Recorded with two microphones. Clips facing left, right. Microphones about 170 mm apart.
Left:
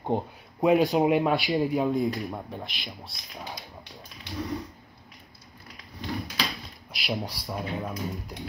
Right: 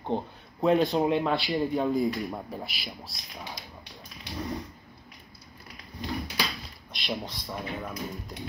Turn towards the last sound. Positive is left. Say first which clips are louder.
# left 3 dB
turn(degrees=15)  # may be behind; listen again after turning